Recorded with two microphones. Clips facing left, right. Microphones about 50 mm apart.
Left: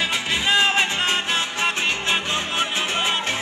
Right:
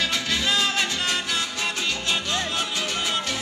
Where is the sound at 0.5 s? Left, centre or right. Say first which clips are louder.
Left 7 dB; left.